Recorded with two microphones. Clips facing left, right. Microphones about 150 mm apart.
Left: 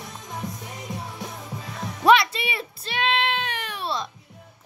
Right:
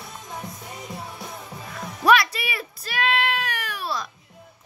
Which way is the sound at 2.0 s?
25° left (ahead or behind).